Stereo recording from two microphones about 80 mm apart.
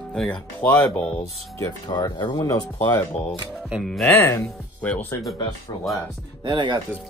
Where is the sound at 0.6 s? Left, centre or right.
Centre.